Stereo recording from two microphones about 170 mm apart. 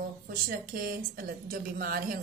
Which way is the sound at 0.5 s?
60° right (ahead or behind).